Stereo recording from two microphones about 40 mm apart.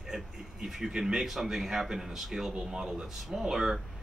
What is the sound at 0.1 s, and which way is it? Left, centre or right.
Speech, centre.